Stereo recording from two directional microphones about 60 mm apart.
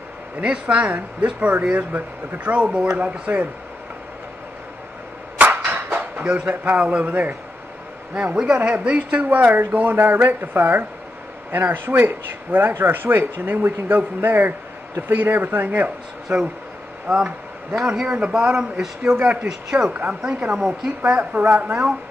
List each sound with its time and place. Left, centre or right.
0.4 s speech: centre
5.4 s a sound: right
6.5 s speech: right
8.1 s speech: centre
9.9 s speech: right
17.1 s speech: centre
17.7 s speech: centre
18.0 s speech: right
18.5 s speech: centre
19.9 s speech: right
21.2 s speech: right